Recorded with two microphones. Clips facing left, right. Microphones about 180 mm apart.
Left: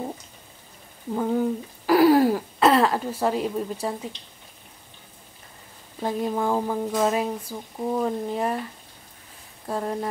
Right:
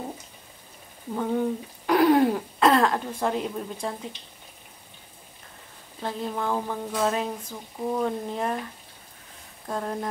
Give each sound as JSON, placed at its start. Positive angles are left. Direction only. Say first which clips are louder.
{"t": 1.1, "sound": "speech", "louder": "left 2 dB", "side_deg": 5}
{"t": 6.0, "sound": "speech", "louder": "left 4 dB", "side_deg": 15}
{"t": 9.7, "sound": "speech", "louder": "left 2 dB", "side_deg": 5}